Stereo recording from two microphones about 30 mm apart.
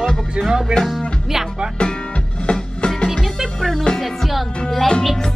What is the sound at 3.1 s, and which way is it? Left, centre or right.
Music, centre.